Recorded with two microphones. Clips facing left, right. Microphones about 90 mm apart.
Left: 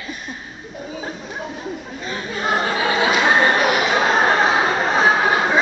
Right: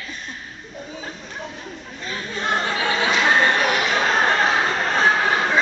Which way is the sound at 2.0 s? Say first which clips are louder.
Left 2 dB; 10° left (ahead or behind).